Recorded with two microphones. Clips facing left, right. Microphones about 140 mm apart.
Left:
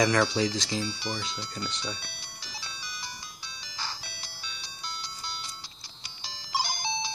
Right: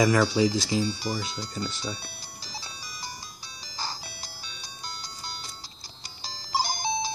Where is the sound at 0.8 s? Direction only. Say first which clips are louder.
Right 4 dB; 40° right (ahead or behind).